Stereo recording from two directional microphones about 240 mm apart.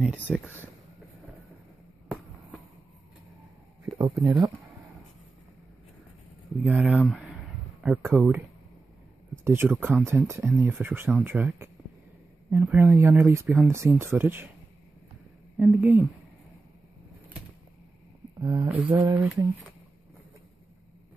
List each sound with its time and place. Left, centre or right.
0.3 s speech: centre
3.8 s speech: centre
6.6 s speech: centre
15.5 s a woman's voice: centre
18.4 s speech: centre